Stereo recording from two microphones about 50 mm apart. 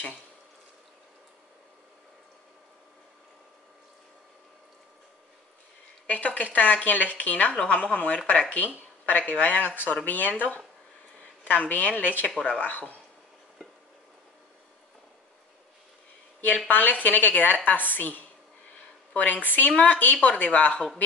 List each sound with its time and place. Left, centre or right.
6.0 s a woman's voice: left
8.7 s a woman's voice: left
11.4 s a woman's voice: left
16.3 s a woman's voice: left